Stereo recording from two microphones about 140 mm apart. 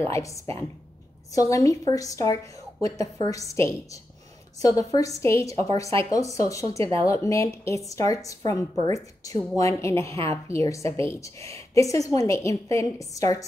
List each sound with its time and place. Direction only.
0.1 s a woman's voice: 20° left (ahead or behind)